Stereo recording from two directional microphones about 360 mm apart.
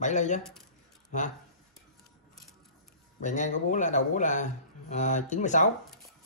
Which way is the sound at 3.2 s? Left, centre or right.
Centre.